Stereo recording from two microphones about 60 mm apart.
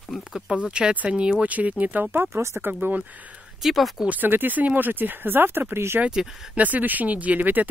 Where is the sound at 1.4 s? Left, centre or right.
Right.